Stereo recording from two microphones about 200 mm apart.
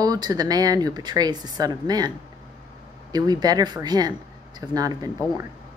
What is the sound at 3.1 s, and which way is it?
Speech, 20° right (ahead or behind).